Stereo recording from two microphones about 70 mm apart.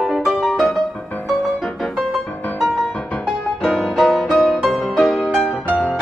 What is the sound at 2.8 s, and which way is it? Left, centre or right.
Music, left.